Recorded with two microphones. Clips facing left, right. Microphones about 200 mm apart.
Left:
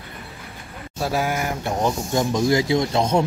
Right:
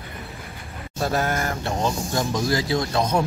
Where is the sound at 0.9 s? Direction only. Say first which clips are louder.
Even; 5° left (ahead or behind).